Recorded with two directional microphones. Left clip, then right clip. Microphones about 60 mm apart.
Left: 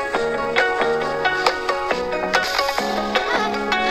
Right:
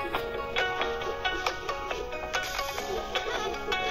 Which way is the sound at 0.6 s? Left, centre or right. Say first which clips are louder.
Left 10 dB; left.